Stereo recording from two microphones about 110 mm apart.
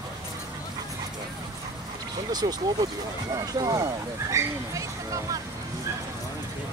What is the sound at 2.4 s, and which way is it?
Speech, 35° right (ahead or behind).